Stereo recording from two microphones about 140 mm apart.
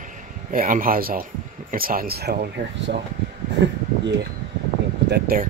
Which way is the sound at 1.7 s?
90° right.